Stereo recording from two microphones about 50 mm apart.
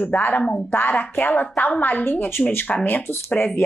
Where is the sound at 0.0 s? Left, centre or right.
Left.